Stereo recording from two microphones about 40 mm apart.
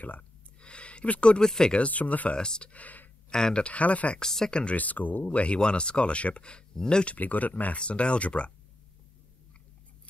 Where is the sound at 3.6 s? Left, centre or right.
Left.